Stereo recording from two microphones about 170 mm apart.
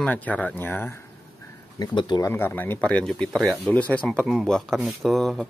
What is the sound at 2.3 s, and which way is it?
Speech, 10° left (ahead or behind).